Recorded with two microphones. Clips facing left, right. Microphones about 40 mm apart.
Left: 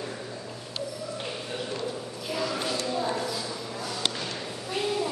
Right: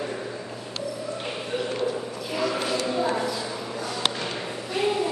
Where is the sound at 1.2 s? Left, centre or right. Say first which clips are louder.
Right 7 dB; centre.